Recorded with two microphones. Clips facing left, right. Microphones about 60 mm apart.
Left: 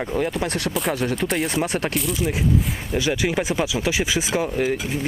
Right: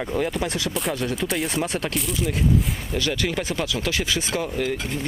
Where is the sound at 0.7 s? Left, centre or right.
Centre.